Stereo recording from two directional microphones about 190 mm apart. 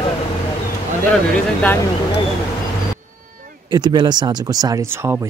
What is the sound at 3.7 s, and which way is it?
Speech, 20° right (ahead or behind).